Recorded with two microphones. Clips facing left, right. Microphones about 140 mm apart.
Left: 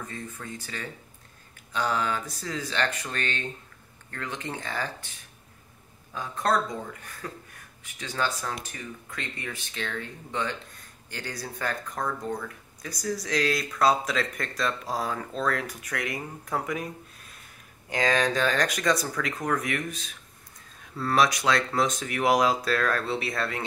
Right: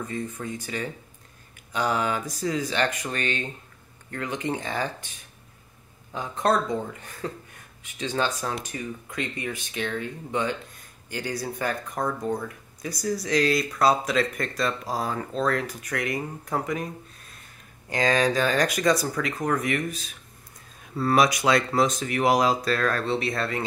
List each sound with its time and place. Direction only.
0.1 s speech: 15° right (ahead or behind)
6.1 s speech: 20° right (ahead or behind); by 20.0 s centre (ahead or behind)
20.9 s speech: 15° right (ahead or behind)